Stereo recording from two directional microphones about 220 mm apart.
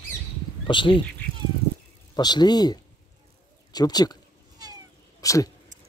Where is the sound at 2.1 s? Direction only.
20° left (ahead or behind).